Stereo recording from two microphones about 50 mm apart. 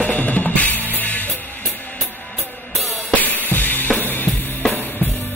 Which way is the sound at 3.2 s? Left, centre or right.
Left.